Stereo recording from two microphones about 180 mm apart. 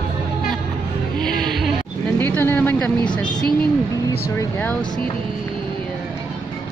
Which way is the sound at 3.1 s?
25° left (ahead or behind).